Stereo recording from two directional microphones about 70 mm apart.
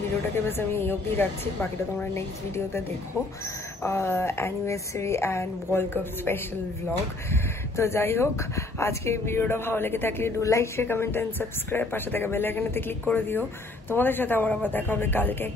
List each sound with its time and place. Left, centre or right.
0.5 s speech: left
3.8 s speech: left